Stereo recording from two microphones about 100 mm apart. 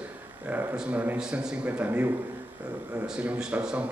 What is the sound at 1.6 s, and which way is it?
A man's voice, 15° right (ahead or behind).